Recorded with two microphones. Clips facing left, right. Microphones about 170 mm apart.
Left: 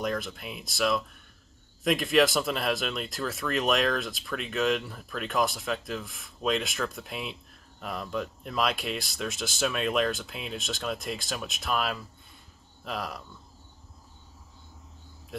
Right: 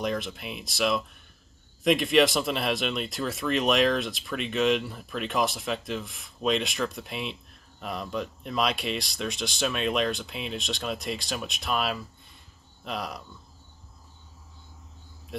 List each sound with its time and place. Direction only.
0.0 s speech: centre (ahead or behind)